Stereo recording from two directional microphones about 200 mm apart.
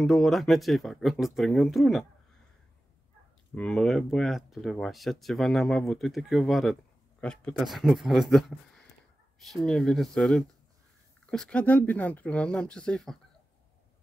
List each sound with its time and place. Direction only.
0.0 s speech: centre (ahead or behind)
3.5 s speech: 5° left (ahead or behind)